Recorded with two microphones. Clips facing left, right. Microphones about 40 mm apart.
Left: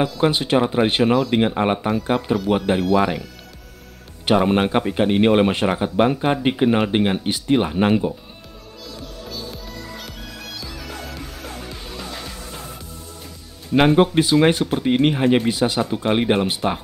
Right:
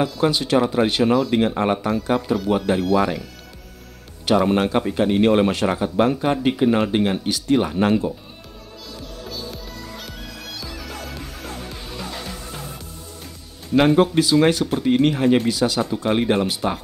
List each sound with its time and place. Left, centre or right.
0.3 s speech: left
4.3 s speech: left
9.3 s music: centre
13.7 s speech: centre